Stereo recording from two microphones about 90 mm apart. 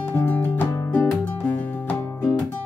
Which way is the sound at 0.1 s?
25° left (ahead or behind).